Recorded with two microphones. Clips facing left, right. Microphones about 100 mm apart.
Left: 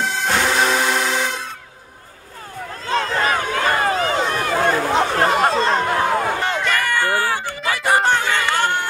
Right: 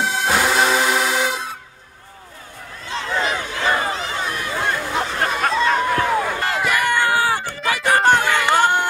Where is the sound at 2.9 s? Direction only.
50° left (ahead or behind).